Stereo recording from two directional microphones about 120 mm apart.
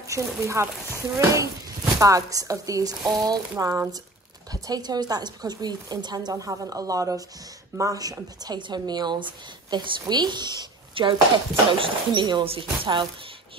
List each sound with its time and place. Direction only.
0.0 s a woman's voice: 25° right (ahead or behind); by 13.0 s 45° right (ahead or behind)